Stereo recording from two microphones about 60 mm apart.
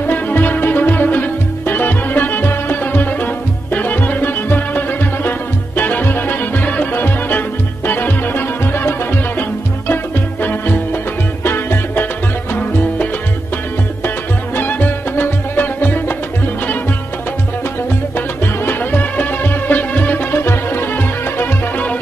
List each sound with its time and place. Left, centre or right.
0.0 s music: left
11.4 s music: left
14.0 s music: left
18.1 s music: left